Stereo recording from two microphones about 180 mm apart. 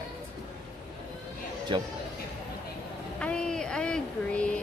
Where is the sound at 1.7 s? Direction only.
25° right (ahead or behind).